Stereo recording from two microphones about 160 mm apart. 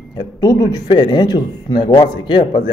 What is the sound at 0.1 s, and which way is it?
A man's voice, 25° left (ahead or behind).